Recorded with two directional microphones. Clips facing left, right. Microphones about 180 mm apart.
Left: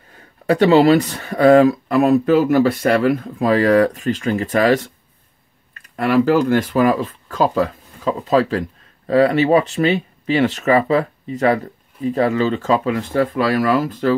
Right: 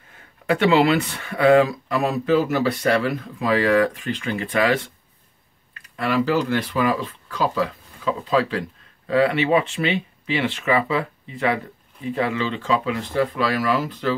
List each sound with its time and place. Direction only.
0.5 s speech: 35° left (ahead or behind)